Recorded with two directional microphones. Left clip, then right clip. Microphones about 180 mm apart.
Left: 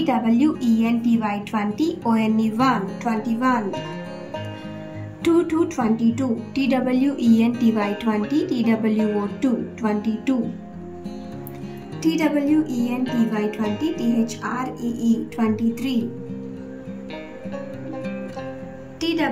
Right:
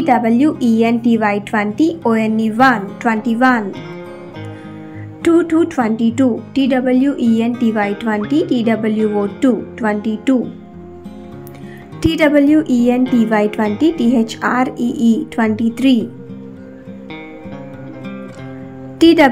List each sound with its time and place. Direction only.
0.0 s speech: 10° right (ahead or behind)
5.2 s speech: 10° right (ahead or behind)
12.0 s a woman's voice: 20° right (ahead or behind)